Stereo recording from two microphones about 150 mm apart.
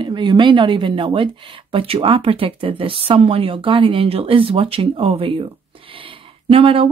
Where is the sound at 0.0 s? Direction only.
30° right (ahead or behind).